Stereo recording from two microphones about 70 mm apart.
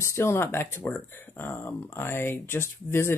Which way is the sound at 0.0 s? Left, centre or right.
Left.